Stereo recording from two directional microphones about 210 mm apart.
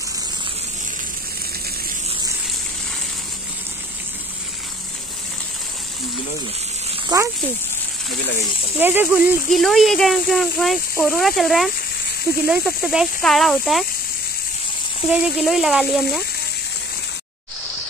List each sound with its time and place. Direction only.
7.1 s speech: 20° right (ahead or behind)
8.7 s speech: 10° right (ahead or behind)
15.0 s speech: 5° right (ahead or behind)